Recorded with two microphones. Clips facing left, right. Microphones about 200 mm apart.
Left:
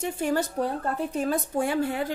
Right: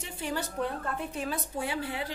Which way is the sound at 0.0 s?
45° left (ahead or behind).